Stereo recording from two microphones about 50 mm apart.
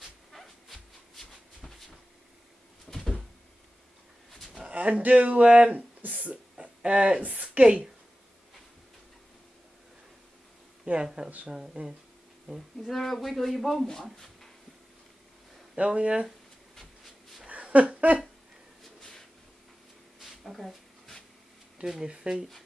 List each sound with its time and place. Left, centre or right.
0.3 s dog: centre
2.9 s cupboard open or close: centre
4.6 s speech: right
6.5 s a sound: centre
7.6 s speech: centre
10.9 s speech: right
11.4 s speech: centre
12.8 s speech: centre
15.7 s speech: centre
17.5 s a sound: right
18.8 s a sound: centre
21.7 s speech: centre